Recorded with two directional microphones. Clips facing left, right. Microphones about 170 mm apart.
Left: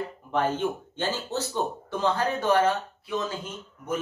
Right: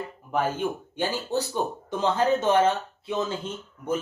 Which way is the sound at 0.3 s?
10° right (ahead or behind).